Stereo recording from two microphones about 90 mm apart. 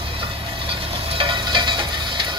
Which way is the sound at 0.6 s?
85° right.